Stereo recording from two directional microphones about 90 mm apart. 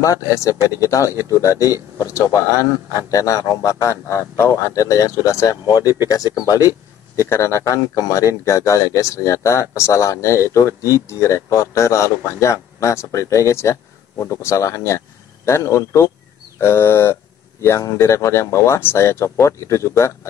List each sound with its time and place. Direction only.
0.3 s speech: 35° left (ahead or behind)